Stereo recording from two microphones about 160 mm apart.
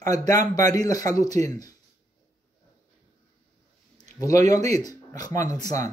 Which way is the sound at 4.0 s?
20° left (ahead or behind).